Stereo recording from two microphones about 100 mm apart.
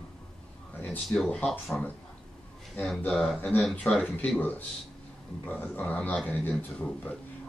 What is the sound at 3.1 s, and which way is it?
Speech, centre (ahead or behind).